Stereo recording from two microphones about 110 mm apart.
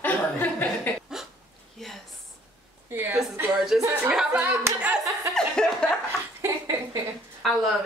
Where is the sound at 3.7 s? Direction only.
5° right (ahead or behind).